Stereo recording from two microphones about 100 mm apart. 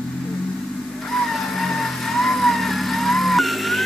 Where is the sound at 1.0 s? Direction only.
5° left (ahead or behind).